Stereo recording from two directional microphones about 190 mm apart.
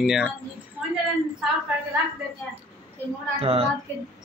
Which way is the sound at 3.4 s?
30° right (ahead or behind).